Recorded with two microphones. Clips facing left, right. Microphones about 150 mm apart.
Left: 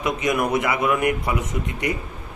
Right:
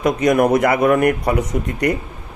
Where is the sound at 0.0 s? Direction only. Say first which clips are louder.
Right 7 dB; 45° right (ahead or behind).